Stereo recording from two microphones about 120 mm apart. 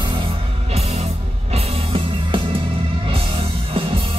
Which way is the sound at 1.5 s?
50° right (ahead or behind).